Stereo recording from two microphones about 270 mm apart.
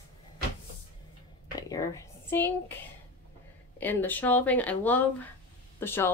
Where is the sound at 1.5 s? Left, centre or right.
Centre.